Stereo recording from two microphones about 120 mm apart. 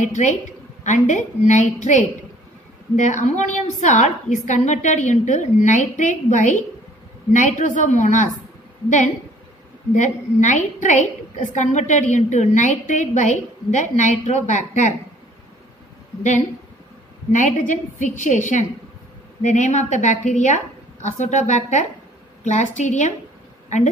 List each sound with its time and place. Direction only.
0.0 s a woman's voice: 80° left
9.9 s a woman's voice: 90° left
16.2 s a woman's voice: 90° left